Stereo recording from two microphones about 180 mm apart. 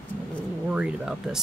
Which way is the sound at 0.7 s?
5° right (ahead or behind).